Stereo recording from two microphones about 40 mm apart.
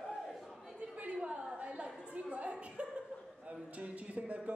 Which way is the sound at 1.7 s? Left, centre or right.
Right.